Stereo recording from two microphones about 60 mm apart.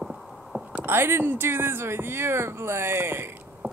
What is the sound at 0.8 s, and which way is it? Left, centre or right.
Speech, right.